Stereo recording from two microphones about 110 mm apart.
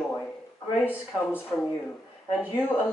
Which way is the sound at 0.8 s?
20° left (ahead or behind).